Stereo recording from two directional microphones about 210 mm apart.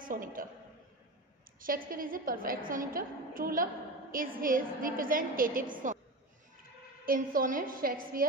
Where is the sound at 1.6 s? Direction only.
40° right (ahead or behind).